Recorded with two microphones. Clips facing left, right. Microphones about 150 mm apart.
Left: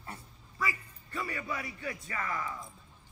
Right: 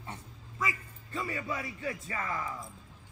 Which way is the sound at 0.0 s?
20° right (ahead or behind).